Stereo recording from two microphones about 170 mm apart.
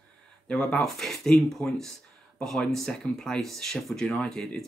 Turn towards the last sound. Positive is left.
turn(degrees=5)  # may be behind; listen again after turning